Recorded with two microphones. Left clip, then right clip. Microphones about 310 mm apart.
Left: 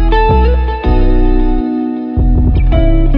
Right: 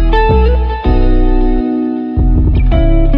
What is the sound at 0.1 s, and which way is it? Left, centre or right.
Music, left.